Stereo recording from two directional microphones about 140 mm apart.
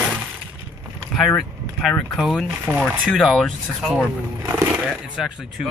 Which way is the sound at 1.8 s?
Centre (ahead or behind).